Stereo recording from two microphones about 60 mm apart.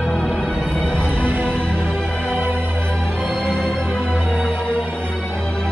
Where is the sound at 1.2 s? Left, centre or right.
Right.